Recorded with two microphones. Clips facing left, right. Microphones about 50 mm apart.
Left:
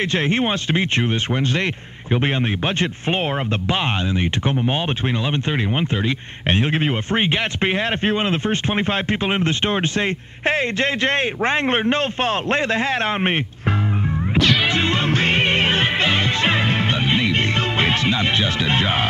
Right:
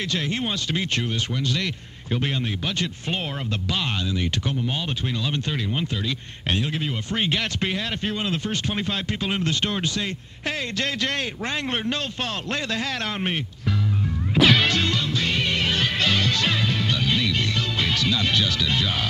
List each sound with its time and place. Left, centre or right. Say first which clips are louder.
0.0 s speech: left 7 dB; left
14.7 s music: left 4 dB; left